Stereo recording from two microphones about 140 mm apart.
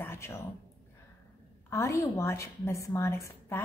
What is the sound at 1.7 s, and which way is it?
A woman's voice, 20° left (ahead or behind).